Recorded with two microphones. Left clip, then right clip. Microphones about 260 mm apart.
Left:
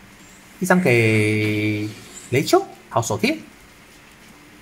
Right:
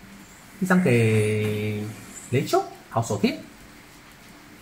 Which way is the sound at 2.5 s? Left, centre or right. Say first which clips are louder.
Left 6 dB; left.